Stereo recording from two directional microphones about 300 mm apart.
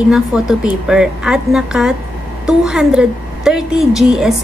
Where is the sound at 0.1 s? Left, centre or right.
Centre.